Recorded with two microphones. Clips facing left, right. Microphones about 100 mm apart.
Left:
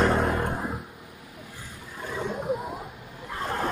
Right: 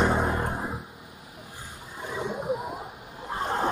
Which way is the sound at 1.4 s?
25° right (ahead or behind).